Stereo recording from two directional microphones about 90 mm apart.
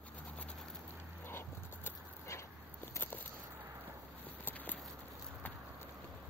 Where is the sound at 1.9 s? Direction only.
30° left (ahead or behind).